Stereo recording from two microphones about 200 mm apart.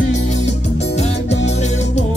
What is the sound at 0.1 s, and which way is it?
Music, 35° left (ahead or behind).